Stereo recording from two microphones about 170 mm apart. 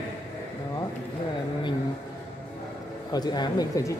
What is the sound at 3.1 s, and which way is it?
Speech, 25° left (ahead or behind).